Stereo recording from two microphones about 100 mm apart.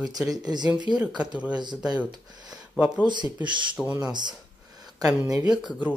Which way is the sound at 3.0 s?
50° right (ahead or behind).